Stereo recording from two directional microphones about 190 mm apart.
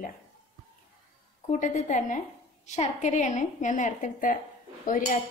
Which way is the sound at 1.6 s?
40° left (ahead or behind).